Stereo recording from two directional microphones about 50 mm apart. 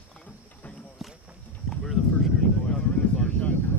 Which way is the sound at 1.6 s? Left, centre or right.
Centre.